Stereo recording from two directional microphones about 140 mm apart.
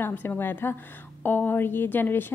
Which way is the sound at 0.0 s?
15° left (ahead or behind).